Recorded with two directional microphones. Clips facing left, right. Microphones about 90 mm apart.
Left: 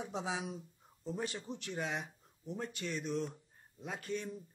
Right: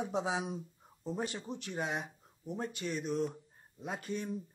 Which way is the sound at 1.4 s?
15° right (ahead or behind).